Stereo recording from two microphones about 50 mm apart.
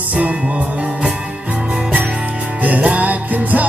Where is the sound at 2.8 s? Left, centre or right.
Right.